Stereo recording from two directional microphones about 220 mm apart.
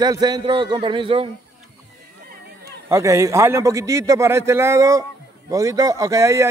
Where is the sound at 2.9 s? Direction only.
15° right (ahead or behind).